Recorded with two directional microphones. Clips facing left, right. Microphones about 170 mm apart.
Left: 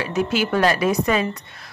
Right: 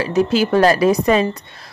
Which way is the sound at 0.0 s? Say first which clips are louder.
Right 5 dB; 35° right (ahead or behind).